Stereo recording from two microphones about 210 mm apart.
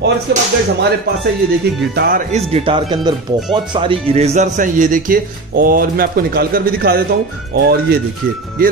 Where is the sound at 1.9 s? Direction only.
50° right (ahead or behind).